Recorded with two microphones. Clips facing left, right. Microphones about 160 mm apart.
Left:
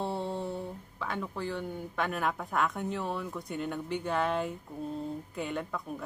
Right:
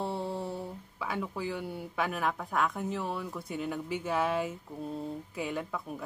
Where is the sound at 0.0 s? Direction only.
Centre (ahead or behind).